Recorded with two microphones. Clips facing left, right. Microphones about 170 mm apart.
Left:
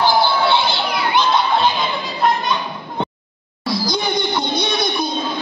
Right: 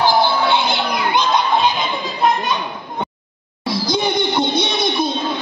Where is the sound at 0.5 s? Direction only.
15° right (ahead or behind).